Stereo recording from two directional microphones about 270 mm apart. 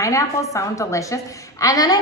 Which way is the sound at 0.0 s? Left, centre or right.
Centre.